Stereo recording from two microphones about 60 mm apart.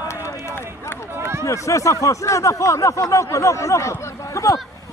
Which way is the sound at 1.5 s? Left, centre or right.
Left.